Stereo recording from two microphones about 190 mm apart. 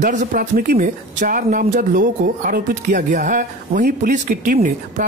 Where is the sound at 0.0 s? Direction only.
40° right (ahead or behind).